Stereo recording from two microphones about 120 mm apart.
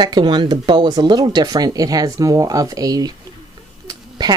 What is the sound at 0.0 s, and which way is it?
Speech, 40° right (ahead or behind).